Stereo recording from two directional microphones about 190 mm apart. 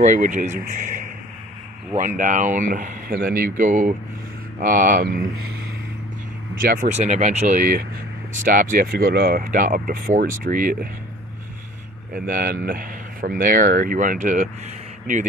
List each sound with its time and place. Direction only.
0.0 s speech: 40° right (ahead or behind)
6.5 s speech: 50° right (ahead or behind)
12.1 s speech: 45° right (ahead or behind)